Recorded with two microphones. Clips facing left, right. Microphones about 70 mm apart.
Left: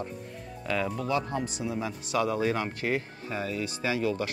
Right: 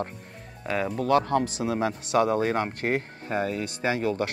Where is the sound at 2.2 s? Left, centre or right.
Right.